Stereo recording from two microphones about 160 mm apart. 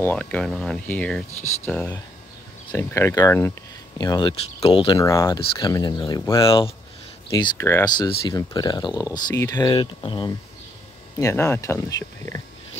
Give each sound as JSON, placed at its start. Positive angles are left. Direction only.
{"t": 0.0, "sound": "speech", "side_deg": 10}
{"t": 5.0, "sound": "speech", "side_deg": 20}
{"t": 6.4, "sound": "speech", "side_deg": 35}
{"t": 7.2, "sound": "speech", "side_deg": 20}